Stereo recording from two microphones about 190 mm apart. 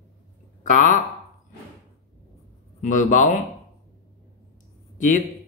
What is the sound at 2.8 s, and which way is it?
Speech, 45° left (ahead or behind).